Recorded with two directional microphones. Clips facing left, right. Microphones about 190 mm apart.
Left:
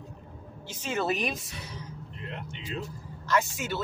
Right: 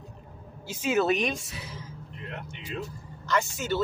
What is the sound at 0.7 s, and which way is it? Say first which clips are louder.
Speech: right 5 dB; 5° right (ahead or behind).